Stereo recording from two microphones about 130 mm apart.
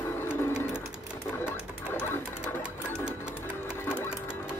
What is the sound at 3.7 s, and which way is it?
Music, 15° left (ahead or behind).